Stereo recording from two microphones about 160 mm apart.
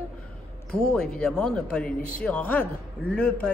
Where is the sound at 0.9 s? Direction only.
5° left (ahead or behind).